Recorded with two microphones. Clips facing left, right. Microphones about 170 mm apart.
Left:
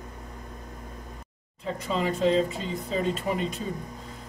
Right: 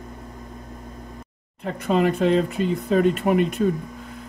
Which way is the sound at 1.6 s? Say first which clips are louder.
Right 7 dB; 60° right (ahead or behind).